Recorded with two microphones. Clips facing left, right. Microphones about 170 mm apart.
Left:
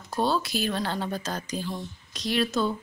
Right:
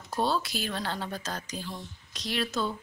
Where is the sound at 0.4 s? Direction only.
50° left (ahead or behind).